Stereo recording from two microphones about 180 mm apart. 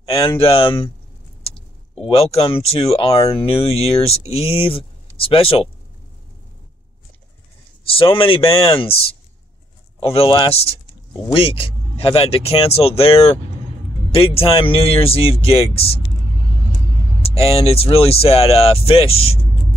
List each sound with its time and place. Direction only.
0.0 s a sound: 30° left (ahead or behind)
0.4 s speech: 30° left (ahead or behind)
2.0 s speech: 35° left (ahead or behind)
7.9 s speech: 30° left (ahead or behind)
9.9 s speech: 30° left (ahead or behind)
17.2 s speech: 35° left (ahead or behind)